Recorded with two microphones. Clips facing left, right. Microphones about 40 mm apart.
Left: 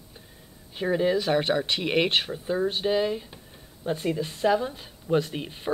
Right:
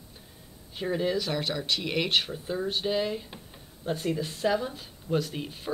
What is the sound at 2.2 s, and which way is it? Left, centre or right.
Speech, centre.